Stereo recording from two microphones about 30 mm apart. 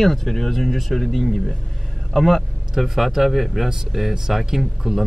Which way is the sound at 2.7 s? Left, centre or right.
Centre.